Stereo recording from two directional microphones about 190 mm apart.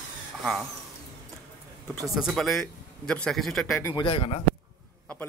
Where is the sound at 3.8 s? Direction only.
15° left (ahead or behind).